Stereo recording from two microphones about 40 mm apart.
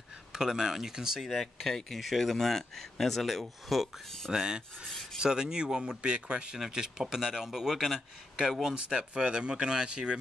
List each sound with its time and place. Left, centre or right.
0.3 s speech: centre
1.4 s speech: centre
4.3 s speech: centre
6.6 s speech: centre
8.7 s speech: right